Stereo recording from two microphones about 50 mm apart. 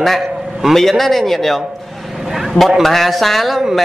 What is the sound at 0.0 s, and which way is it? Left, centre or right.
Speech, centre.